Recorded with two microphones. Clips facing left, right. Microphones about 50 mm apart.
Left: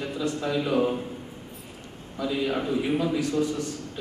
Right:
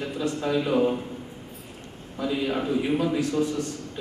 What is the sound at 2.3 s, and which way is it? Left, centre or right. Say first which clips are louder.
Speech: right 1 dB; centre.